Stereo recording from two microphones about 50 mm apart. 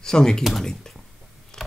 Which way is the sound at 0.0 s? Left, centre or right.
Centre.